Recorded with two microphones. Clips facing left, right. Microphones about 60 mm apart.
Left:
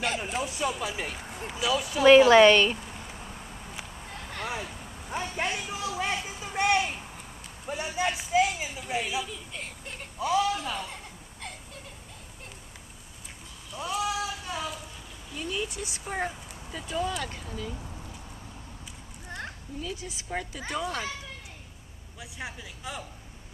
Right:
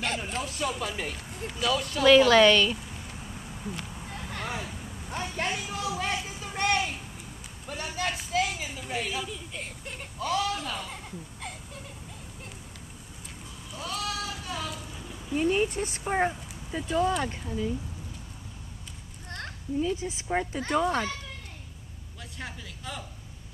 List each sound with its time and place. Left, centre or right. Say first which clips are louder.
0.0 s speech: left 2 dB; centre
2.0 s a woman's voice: left 2 dB; left
3.1 s a sound: even; centre
3.6 s a sound: right 3 dB; centre
7.6 s a man's voice: left 3 dB; centre
10.1 s a man's voice: left 3 dB; centre
13.7 s sheep: left 4 dB; centre
15.3 s speech: right 8 dB; right
16.0 s speech: right 5 dB; right
16.9 s a man's voice: right 5 dB; centre
17.2 s speech: right 5 dB; right
19.2 s children playing: left 1 dB; centre
19.8 s speech: right 8 dB; right
22.4 s speech: left 1 dB; centre